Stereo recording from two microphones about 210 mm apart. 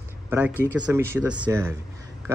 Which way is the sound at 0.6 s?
10° right (ahead or behind).